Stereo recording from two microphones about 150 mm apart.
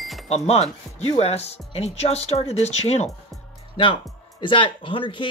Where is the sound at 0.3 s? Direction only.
45° left (ahead or behind).